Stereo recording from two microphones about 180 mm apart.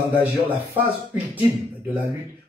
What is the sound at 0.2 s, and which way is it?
Speech, 10° right (ahead or behind).